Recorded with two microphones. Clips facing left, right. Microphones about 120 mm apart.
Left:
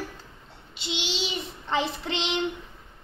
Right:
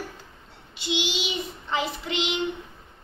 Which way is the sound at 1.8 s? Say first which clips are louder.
Even; 5° right (ahead or behind).